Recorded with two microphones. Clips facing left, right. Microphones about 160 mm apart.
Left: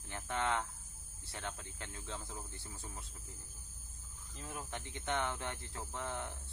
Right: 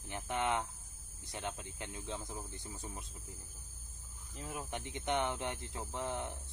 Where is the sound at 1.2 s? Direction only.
15° right (ahead or behind).